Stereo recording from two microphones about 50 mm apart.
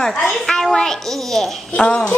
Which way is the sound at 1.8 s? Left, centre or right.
Left.